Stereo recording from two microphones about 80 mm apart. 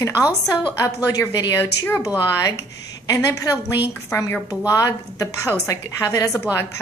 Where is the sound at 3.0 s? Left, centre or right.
Left.